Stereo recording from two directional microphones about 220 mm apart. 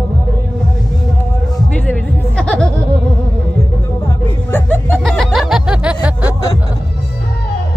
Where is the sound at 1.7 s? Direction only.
5° left (ahead or behind).